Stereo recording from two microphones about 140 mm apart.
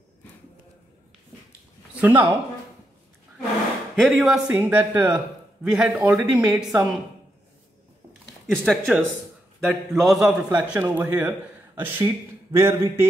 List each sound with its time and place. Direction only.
2.0 s speech: 10° right (ahead or behind)
4.0 s a man's voice: centre (ahead or behind)
8.5 s a woman's voice: 5° left (ahead or behind); by 13.1 s 20° right (ahead or behind)